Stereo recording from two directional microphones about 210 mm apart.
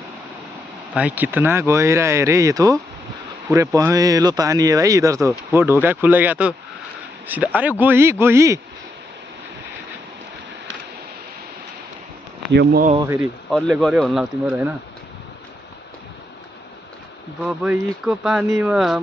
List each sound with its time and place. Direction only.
0.9 s speech: 5° right (ahead or behind)
12.5 s speech: 45° right (ahead or behind)
12.9 s speech: 10° right (ahead or behind)
13.5 s speech: centre (ahead or behind)
17.4 s speech: centre (ahead or behind)